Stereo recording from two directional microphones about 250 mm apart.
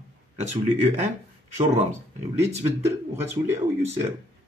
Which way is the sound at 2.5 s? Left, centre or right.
Right.